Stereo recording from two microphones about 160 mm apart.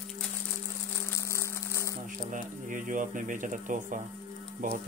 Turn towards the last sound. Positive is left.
turn(degrees=-55)  # may be behind; listen again after turning